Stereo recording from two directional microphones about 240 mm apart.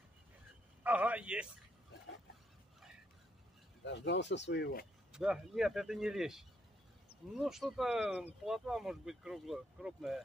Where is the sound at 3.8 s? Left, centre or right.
Left.